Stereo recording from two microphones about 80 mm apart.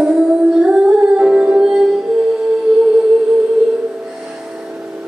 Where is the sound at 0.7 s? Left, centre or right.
Centre.